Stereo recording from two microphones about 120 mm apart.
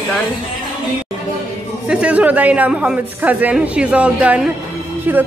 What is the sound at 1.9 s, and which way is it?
A man's voice, 10° right (ahead or behind).